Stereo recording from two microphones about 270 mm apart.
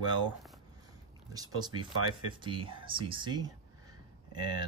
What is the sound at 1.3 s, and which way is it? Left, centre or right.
Speech, centre.